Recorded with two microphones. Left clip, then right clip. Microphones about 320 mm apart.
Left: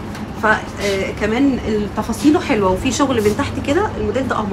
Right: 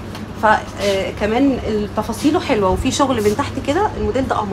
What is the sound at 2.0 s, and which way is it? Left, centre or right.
A woman's voice, right.